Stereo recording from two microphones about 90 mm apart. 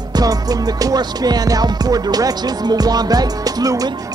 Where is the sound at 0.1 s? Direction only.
45° right (ahead or behind).